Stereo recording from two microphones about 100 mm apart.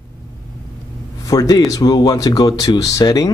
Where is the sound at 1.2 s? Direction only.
35° left (ahead or behind).